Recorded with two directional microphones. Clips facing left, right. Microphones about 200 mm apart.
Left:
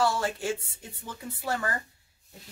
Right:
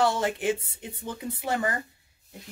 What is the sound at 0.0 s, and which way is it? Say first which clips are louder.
Speech: right 3 dB; 20° right (ahead or behind).